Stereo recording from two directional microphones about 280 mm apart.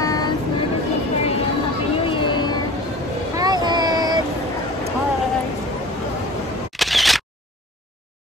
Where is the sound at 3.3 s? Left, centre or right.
Centre.